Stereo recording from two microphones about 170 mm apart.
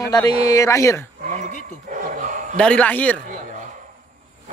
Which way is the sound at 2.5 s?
5° left (ahead or behind).